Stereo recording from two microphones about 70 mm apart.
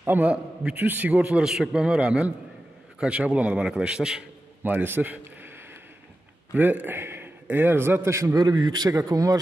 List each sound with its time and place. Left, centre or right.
0.0 s a man's voice: right
1.4 s a man's voice: centre
4.6 s a man's voice: right
6.5 s a man's voice: right
8.4 s speech: right